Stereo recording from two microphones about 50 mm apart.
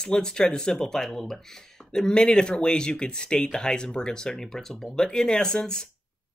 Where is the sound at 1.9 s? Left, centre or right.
Centre.